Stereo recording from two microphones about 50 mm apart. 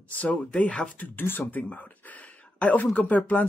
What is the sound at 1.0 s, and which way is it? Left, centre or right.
Speech, left.